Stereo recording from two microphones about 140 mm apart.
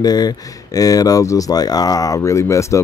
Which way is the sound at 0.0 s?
30° left (ahead or behind).